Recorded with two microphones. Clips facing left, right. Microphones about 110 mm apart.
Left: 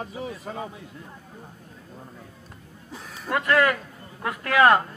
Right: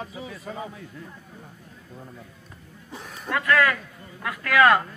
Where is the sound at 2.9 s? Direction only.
Centre (ahead or behind).